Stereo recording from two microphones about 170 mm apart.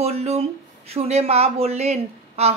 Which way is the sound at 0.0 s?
40° right (ahead or behind).